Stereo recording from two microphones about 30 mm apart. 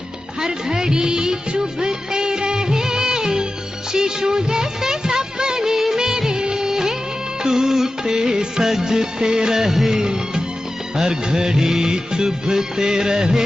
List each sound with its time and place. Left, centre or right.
0.4 s music: right
1.6 s music of bollywood: right
3.9 s music: right
5.9 s music of bollywood: centre
7.4 s music: centre
9.6 s music: centre
9.9 s music: right